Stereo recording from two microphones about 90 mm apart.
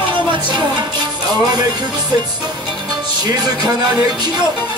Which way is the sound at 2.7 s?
50° right (ahead or behind).